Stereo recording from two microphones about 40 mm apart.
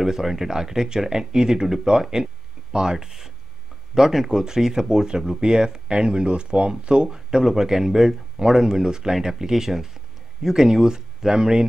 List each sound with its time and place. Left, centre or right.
0.0 s speech: centre
7.1 s speech: centre